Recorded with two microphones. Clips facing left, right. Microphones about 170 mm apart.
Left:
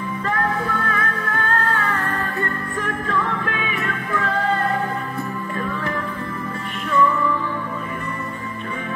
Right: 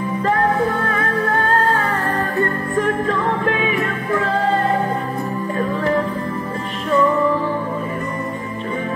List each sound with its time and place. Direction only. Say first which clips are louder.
0.3 s music: right 5 dB; 30° right (ahead or behind)
3.2 s music: right 5 dB; 40° right (ahead or behind)